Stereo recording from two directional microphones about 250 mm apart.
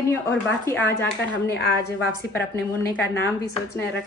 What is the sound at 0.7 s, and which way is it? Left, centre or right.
Speech, centre.